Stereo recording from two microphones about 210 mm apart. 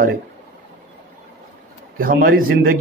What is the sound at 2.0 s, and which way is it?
Speech, 45° right (ahead or behind).